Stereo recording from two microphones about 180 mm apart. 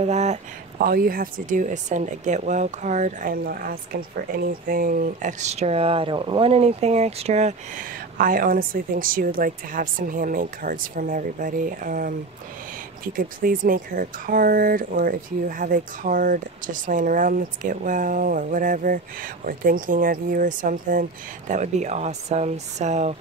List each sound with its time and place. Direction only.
0.0 s speech: 40° right (ahead or behind)
0.7 s speech: 55° right (ahead or behind); by 23.1 s 40° right (ahead or behind)